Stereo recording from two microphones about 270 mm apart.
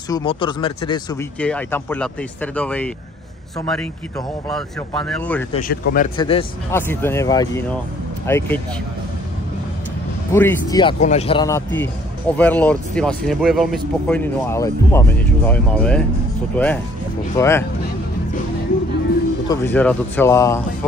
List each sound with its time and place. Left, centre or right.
0.1 s speech: centre
1.4 s speech: centre
5.5 s speech: left
6.1 s speech: centre
10.3 s speech: centre
19.5 s speech: centre